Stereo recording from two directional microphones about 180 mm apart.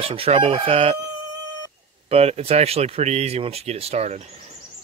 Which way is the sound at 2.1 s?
35° right (ahead or behind).